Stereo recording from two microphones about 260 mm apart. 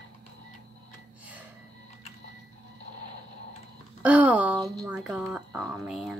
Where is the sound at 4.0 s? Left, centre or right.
Centre.